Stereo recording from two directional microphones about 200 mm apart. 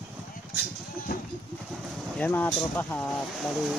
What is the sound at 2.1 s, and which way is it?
Speech, 5° left (ahead or behind).